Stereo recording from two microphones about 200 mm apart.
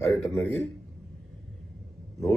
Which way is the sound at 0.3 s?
15° left (ahead or behind).